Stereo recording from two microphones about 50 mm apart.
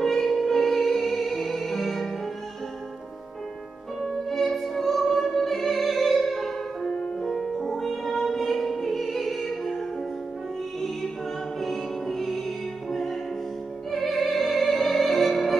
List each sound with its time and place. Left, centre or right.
0.0 s music: centre
4.3 s music: centre
11.6 s music: centre